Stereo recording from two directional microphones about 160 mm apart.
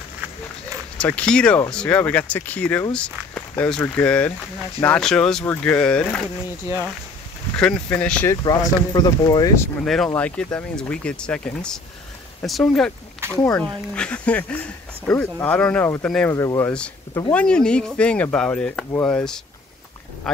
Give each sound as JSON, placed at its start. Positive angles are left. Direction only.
{"t": 0.9, "sound": "speech", "side_deg": 10}
{"t": 7.5, "sound": "speech", "side_deg": 10}
{"t": 8.3, "sound": "speech", "side_deg": 25}
{"t": 10.0, "sound": "speech", "side_deg": 10}
{"t": 16.3, "sound": "speech", "side_deg": 20}
{"t": 17.3, "sound": "speech", "side_deg": 5}